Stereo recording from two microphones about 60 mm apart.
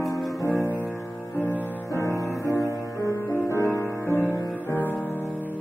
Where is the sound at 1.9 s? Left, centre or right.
Left.